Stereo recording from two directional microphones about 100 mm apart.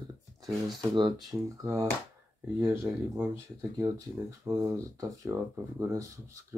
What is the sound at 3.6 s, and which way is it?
Speech, 35° right (ahead or behind).